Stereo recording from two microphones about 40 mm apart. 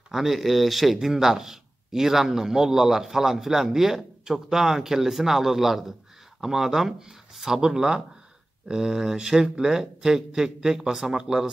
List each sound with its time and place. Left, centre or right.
0.1 s a man's voice: centre